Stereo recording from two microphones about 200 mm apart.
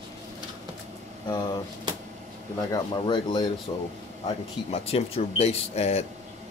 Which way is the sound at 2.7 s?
20° left (ahead or behind).